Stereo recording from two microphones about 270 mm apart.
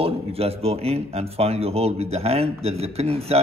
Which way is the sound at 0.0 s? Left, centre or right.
Right.